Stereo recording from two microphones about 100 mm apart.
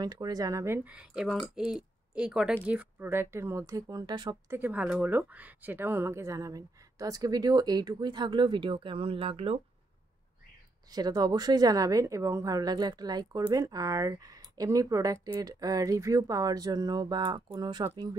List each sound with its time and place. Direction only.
0.0 s speech: 40° right (ahead or behind)
0.8 s speech: 10° right (ahead or behind); by 4.4 s 45° right (ahead or behind)
4.5 s speech: 20° right (ahead or behind); by 9.6 s 80° right
10.9 s speech: 40° right (ahead or behind)